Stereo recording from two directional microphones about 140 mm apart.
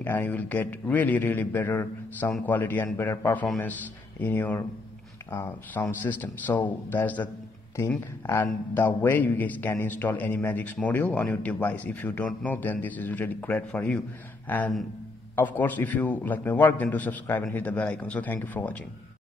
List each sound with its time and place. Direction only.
0.0 s a man's voice: 15° left (ahead or behind)
15.3 s a man's voice: 15° left (ahead or behind)